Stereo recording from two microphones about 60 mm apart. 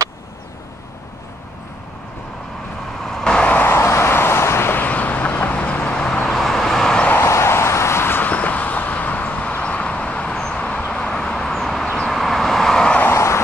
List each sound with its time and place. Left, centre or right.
3.1 s vehicle: centre
3.6 s vehicle: left
6.2 s vehicle: centre
7.2 s vehicle: left; by 13.0 s centre
13.1 s vehicle: left